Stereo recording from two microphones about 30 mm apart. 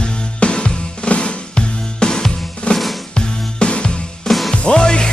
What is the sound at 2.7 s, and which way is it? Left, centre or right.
Music, left.